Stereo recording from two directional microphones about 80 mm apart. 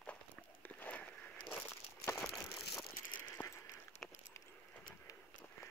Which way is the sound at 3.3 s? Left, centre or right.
Left.